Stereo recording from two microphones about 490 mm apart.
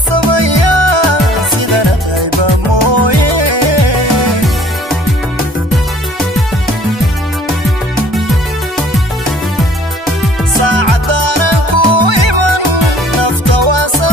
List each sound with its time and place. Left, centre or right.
0.1 s music: right
10.6 s music: right